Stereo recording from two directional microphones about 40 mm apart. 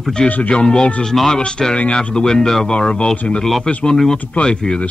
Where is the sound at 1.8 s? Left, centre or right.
Left; by 2.7 s centre.